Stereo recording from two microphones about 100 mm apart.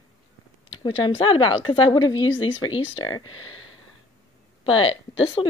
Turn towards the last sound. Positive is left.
turn(degrees=55)  # may be behind; listen again after turning